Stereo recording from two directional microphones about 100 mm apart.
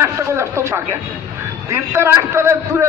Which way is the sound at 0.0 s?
30° right (ahead or behind).